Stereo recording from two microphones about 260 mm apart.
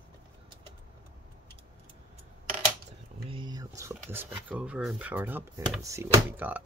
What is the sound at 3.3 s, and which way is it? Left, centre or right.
Speech, centre.